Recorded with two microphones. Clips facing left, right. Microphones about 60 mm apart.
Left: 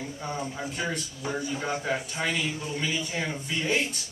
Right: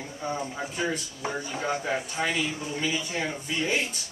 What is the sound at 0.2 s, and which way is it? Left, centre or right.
Speech, centre.